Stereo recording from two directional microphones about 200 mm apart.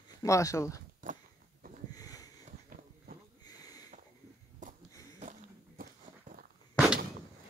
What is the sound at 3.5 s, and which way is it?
Sniff, 20° left (ahead or behind).